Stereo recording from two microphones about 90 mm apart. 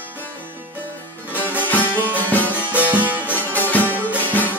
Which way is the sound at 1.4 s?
20° right (ahead or behind).